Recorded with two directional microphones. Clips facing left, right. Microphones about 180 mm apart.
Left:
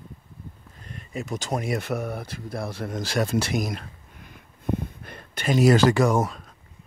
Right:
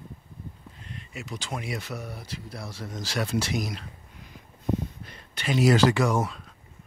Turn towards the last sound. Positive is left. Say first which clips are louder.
# left 4 dB
turn(degrees=45)  # may be behind; listen again after turning